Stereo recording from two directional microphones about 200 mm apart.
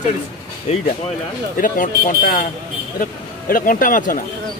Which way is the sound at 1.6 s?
45° left (ahead or behind).